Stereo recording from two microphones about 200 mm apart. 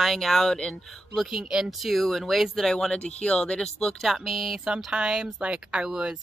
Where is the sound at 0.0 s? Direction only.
Centre (ahead or behind).